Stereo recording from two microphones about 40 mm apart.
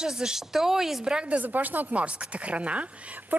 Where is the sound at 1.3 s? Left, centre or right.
Right.